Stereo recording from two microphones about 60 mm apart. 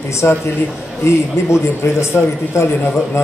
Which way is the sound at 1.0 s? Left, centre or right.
Left.